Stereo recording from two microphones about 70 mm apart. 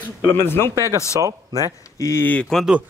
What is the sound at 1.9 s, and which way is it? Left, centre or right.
Speech, left.